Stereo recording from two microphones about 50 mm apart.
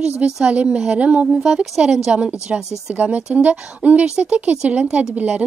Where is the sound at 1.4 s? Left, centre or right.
Centre.